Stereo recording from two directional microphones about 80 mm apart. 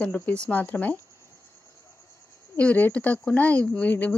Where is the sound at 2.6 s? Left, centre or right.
Left.